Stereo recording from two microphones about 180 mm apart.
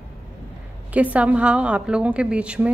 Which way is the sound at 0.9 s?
10° right (ahead or behind).